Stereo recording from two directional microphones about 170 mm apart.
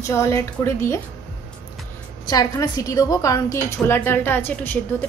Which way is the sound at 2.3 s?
20° left (ahead or behind).